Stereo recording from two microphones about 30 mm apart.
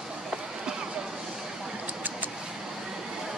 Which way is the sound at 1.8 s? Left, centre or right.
Right.